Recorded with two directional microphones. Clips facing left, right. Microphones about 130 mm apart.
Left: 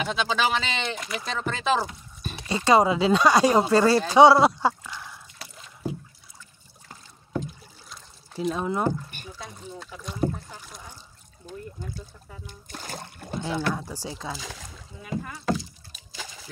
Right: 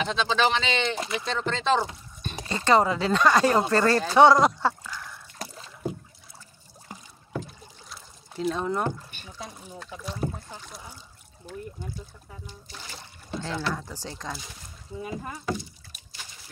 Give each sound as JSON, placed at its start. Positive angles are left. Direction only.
{"t": 0.0, "sound": "speech", "side_deg": 10}
{"t": 0.9, "sound": "speech", "side_deg": -30}
{"t": 1.2, "sound": "speech", "side_deg": 5}
{"t": 7.9, "sound": "a sound", "side_deg": 0}
{"t": 9.8, "sound": "speech", "side_deg": 0}
{"t": 12.4, "sound": "speech", "side_deg": 50}
{"t": 13.4, "sound": "speech", "side_deg": 15}
{"t": 14.4, "sound": "speech", "side_deg": 90}